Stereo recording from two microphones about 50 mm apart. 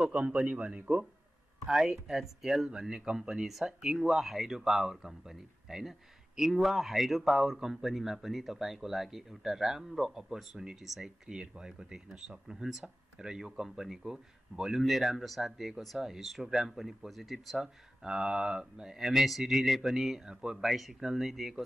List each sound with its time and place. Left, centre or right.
0.0 s a man's voice: right
1.7 s speech: centre
11.2 s speech: centre
17.6 s speech: centre